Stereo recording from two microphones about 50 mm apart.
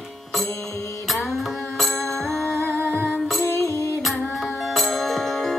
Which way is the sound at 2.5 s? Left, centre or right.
Left.